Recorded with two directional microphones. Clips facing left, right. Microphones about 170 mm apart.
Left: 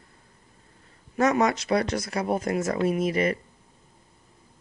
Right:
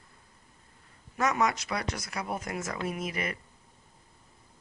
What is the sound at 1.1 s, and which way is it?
Speech, 30° left (ahead or behind).